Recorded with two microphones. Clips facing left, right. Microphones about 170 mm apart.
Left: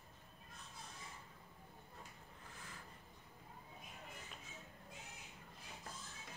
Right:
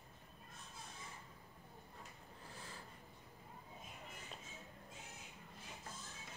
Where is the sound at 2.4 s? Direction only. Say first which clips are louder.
Right 3 dB; 30° right (ahead or behind).